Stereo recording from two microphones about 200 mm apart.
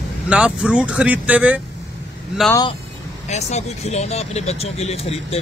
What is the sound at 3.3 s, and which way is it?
Speech, 35° left (ahead or behind).